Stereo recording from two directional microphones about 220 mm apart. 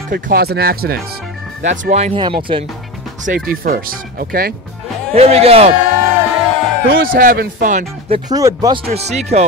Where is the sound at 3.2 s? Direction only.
40° right (ahead or behind).